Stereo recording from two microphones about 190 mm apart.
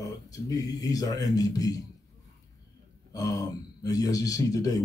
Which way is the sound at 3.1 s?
20° left (ahead or behind).